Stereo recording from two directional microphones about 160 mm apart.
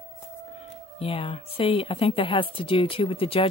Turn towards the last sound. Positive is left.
turn(degrees=35)  # may be behind; listen again after turning